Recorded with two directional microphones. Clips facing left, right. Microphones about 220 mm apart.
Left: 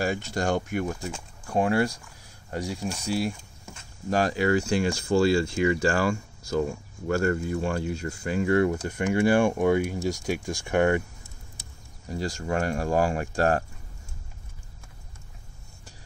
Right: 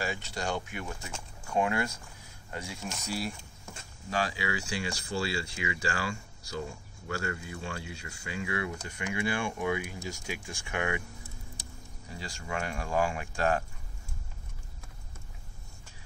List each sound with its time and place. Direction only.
0.0 s speech: 50° left (ahead or behind)
4.1 s speech: 50° left (ahead or behind)
12.1 s speech: 45° left (ahead or behind)